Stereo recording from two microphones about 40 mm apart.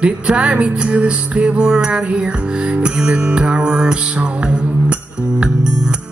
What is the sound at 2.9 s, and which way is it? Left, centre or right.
Music, right.